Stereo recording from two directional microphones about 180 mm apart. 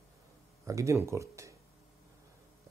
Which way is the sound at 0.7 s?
15° right (ahead or behind).